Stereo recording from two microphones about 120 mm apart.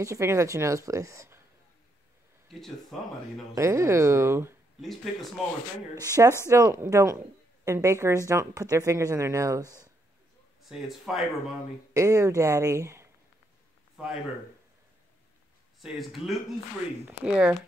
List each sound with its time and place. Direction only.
0.0 s a woman's voice: 25° right (ahead or behind)
2.9 s speech: centre (ahead or behind)
3.5 s a woman's voice: 25° right (ahead or behind)
6.0 s a woman's voice: 30° right (ahead or behind)
10.6 s speech: centre (ahead or behind)
11.9 s speech: 25° right (ahead or behind)
13.9 s speech: 5° right (ahead or behind)
15.8 s speech: centre (ahead or behind)